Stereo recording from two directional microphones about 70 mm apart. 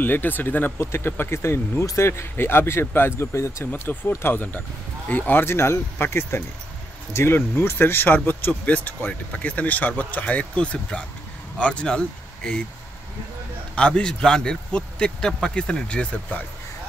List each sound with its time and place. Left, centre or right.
0.0 s speech: left
13.7 s speech: centre